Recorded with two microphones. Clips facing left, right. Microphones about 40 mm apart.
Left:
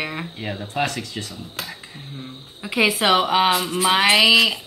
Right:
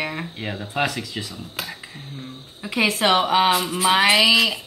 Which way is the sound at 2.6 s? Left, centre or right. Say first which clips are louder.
Left 1 dB; centre.